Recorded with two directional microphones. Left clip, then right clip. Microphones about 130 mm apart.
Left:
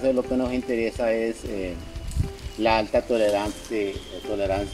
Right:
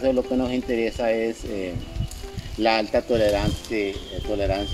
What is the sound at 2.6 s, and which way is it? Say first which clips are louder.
Speech: even; 90° right.